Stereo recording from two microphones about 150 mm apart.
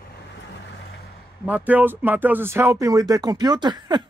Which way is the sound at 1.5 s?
10° right (ahead or behind).